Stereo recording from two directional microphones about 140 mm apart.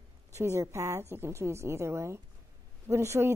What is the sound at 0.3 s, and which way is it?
Speech, 20° right (ahead or behind).